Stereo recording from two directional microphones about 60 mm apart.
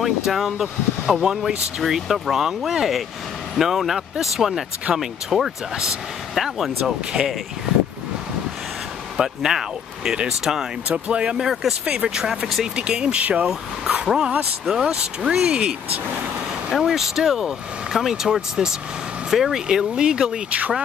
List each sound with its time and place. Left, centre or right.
0.0 s speech: centre
9.1 s speech: centre
10.9 s speech: centre
16.8 s speech: centre